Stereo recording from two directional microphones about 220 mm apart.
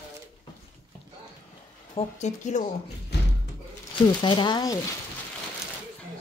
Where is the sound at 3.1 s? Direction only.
50° left (ahead or behind).